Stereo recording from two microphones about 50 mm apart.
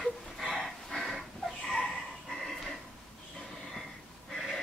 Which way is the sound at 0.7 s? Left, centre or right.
Centre.